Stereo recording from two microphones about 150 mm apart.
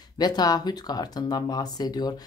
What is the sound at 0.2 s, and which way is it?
Speech, 25° left (ahead or behind).